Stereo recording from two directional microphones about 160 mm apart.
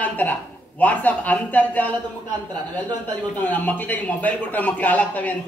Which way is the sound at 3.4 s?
10° left (ahead or behind).